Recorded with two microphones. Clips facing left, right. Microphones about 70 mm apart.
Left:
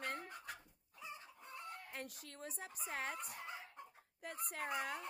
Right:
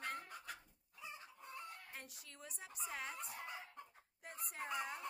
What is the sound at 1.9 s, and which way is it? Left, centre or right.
Speech, left.